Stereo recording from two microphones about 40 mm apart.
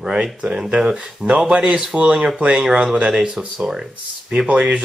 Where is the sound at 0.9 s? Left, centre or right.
Right; by 3.8 s centre.